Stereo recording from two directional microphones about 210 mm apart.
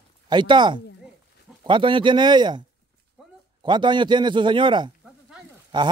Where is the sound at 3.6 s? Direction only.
20° right (ahead or behind).